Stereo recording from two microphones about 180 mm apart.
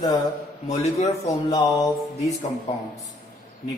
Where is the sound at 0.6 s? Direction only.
40° left (ahead or behind).